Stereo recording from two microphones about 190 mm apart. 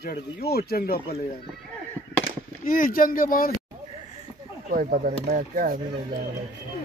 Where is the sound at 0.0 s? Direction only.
55° left (ahead or behind).